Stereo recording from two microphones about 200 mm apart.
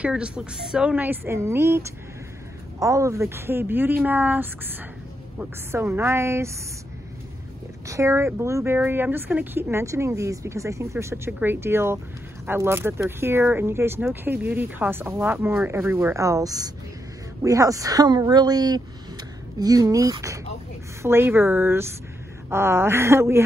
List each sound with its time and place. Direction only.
0.0 s speech: 5° right (ahead or behind)
7.8 s speech: 15° right (ahead or behind)